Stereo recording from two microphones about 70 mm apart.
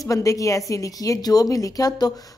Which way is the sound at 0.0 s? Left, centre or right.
Left.